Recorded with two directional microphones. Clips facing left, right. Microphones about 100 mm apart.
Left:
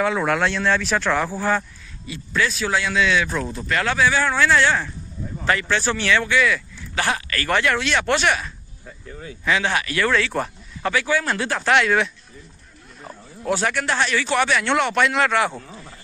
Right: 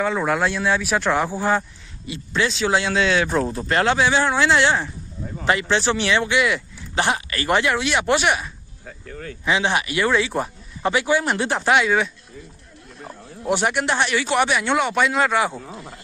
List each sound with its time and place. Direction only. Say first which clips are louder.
0.0 s speech: even; centre (ahead or behind); by 11.7 s 20° right (ahead or behind)
11.7 s speech: left 1 dB; 5° right (ahead or behind)
13.4 s speech: right 1 dB; 20° right (ahead or behind)